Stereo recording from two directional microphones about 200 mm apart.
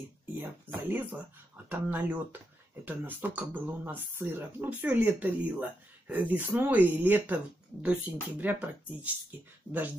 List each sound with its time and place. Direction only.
0.4 s speech: 10° right (ahead or behind)